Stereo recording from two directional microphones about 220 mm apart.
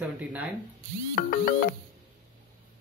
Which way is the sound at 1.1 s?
40° left (ahead or behind).